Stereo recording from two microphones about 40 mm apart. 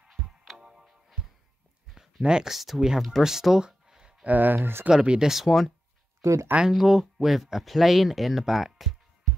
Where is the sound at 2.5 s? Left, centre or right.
Centre.